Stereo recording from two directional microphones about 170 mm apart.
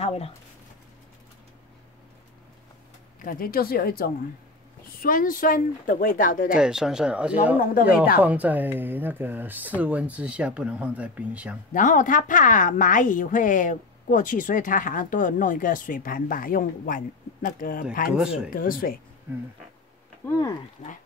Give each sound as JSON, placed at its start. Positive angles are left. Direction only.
{"t": 0.0, "sound": "speech", "side_deg": 35}
{"t": 3.2, "sound": "a woman's voice", "side_deg": 55}
{"t": 6.5, "sound": "speech", "side_deg": -5}
{"t": 11.7, "sound": "a woman's voice", "side_deg": 50}
{"t": 18.1, "sound": "speech", "side_deg": -5}
{"t": 18.5, "sound": "speech", "side_deg": 55}
{"t": 20.2, "sound": "speech", "side_deg": 20}